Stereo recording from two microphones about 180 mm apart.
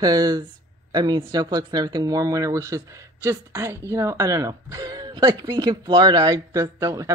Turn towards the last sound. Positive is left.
turn(degrees=-20)  # may be behind; listen again after turning